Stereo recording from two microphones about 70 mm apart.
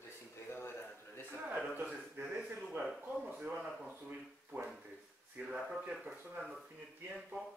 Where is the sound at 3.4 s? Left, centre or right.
Centre.